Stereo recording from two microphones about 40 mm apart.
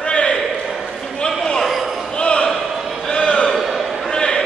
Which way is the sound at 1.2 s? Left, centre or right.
Centre.